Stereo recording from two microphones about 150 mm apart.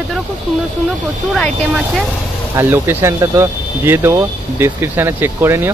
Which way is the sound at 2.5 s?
15° right (ahead or behind).